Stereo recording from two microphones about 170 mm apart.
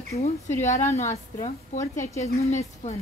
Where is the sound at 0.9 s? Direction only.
40° left (ahead or behind).